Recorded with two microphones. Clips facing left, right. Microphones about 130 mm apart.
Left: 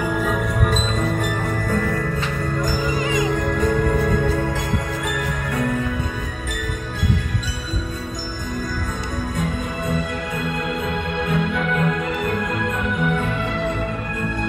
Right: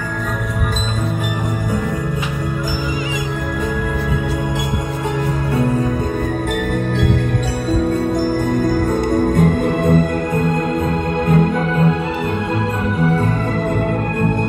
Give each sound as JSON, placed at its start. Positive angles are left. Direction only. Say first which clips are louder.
{"t": 9.1, "sound": "music", "louder": "right 10 dB", "side_deg": -55}
{"t": 11.2, "sound": "music", "louder": "right 6 dB", "side_deg": -40}